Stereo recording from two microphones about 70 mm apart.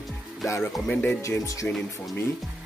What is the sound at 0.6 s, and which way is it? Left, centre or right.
Speech, left.